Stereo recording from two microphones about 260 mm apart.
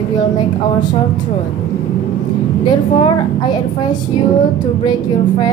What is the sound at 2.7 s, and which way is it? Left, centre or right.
A woman's voice, centre.